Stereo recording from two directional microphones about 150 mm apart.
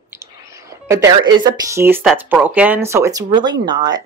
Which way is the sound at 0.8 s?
20° right (ahead or behind).